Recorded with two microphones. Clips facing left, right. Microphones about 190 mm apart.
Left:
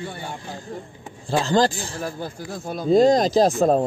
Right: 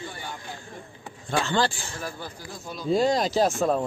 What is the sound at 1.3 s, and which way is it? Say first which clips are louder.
Speech: left 5 dB; 35° left (ahead or behind).